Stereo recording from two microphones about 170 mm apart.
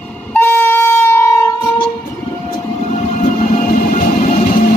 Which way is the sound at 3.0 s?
40° left (ahead or behind).